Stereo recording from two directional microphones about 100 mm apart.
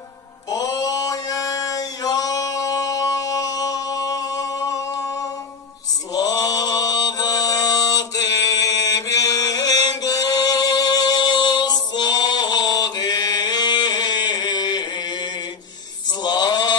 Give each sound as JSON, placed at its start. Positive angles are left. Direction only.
{"t": 0.5, "sound": "mantra", "side_deg": 40}
{"t": 16.2, "sound": "male singing", "side_deg": 45}